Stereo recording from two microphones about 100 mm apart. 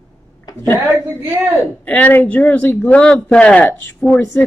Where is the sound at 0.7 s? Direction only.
30° right (ahead or behind).